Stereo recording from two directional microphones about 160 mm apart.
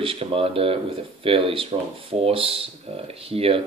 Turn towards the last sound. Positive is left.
turn(degrees=-35)  # may be behind; listen again after turning